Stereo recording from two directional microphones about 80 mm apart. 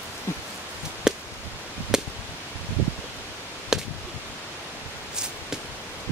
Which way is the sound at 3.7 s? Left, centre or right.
Centre.